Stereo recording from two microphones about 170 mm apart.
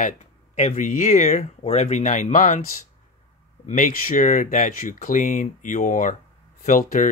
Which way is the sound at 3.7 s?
50° left (ahead or behind).